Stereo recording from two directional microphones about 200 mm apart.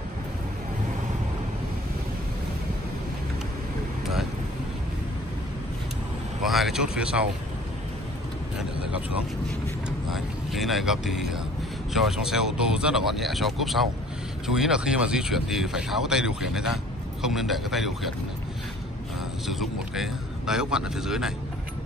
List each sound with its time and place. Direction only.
6.4 s a sound: centre (ahead or behind)
8.5 s vehicle: 5° right (ahead or behind)
9.8 s speech: centre (ahead or behind)
19.4 s speech: centre (ahead or behind)